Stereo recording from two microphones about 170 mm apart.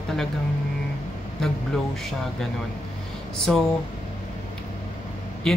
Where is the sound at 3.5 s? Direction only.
5° left (ahead or behind).